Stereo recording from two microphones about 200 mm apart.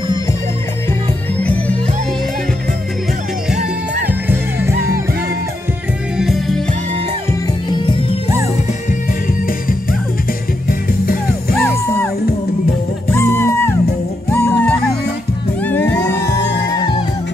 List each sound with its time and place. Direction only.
4.3 s music: 10° right (ahead or behind)
6.1 s music: centre (ahead or behind)
10.7 s music: 45° left (ahead or behind)
11.5 s music: 10° left (ahead or behind)
13.1 s music: 10° left (ahead or behind)
15.8 s music: 60° left (ahead or behind)